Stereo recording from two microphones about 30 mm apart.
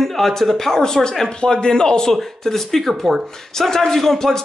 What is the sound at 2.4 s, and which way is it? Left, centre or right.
Speech, centre.